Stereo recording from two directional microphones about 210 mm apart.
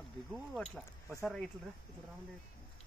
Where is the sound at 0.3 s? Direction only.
5° left (ahead or behind).